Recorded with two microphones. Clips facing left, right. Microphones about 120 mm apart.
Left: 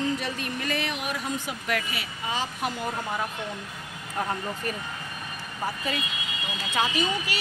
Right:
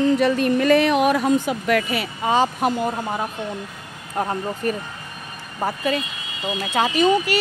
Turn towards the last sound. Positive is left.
turn(degrees=-50)  # may be behind; listen again after turning